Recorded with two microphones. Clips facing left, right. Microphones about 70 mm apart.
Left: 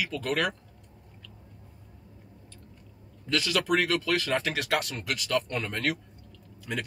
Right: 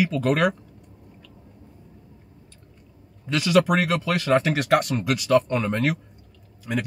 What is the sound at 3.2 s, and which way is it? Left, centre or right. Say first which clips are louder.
A man's voice: right 8 dB; centre.